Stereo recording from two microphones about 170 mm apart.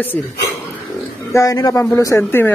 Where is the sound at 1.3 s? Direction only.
20° left (ahead or behind).